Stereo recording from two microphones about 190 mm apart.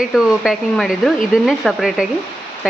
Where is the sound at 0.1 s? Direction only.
Centre (ahead or behind).